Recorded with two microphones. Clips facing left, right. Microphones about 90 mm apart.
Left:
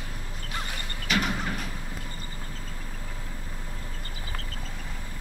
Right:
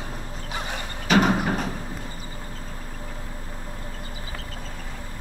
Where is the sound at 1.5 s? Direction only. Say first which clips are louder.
Right 8 dB; 35° right (ahead or behind).